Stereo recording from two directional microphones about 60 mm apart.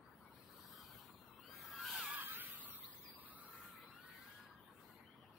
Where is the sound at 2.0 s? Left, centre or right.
Right.